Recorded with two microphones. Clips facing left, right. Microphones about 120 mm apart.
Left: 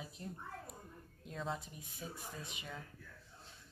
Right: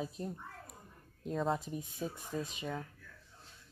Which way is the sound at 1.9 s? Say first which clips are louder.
Right 7 dB; 25° right (ahead or behind).